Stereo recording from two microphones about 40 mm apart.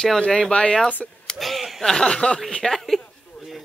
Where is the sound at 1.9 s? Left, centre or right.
Centre.